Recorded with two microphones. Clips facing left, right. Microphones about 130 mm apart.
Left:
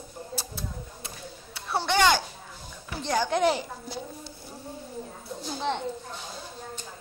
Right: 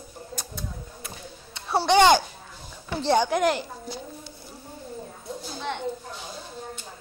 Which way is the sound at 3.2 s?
5° right (ahead or behind).